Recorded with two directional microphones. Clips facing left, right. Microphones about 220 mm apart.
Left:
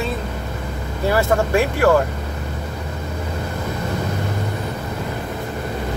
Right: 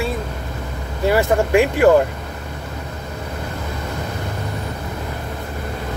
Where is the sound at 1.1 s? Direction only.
15° right (ahead or behind).